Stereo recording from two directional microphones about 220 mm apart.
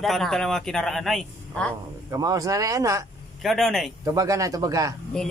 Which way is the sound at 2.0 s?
15° right (ahead or behind).